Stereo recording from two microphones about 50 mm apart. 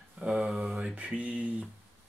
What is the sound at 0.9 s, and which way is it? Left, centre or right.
Speech, right.